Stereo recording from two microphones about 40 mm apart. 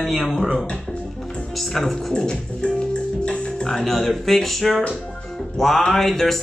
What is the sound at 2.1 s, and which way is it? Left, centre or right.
Music, left.